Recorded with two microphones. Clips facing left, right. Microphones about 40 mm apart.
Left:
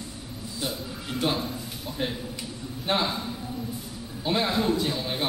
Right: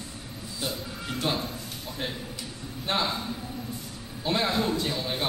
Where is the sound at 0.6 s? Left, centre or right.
Centre.